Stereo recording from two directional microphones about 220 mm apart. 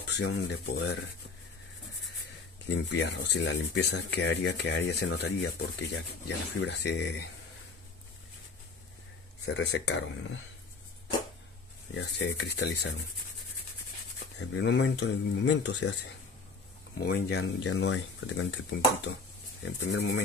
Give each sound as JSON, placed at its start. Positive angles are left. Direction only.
{"t": 0.0, "sound": "speech", "side_deg": 50}
{"t": 2.7, "sound": "speech", "side_deg": 50}
{"t": 9.5, "sound": "speech", "side_deg": 50}
{"t": 11.9, "sound": "speech", "side_deg": 55}
{"t": 14.4, "sound": "speech", "side_deg": 55}
{"t": 17.0, "sound": "speech", "side_deg": 50}
{"t": 19.6, "sound": "speech", "side_deg": 55}